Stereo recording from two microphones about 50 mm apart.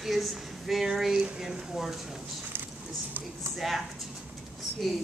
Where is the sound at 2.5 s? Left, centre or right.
Right.